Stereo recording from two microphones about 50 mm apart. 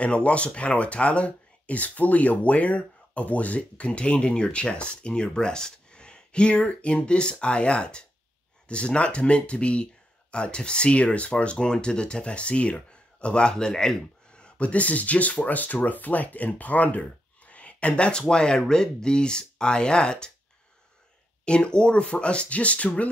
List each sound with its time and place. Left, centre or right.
0.0 s speech: left
21.5 s speech: centre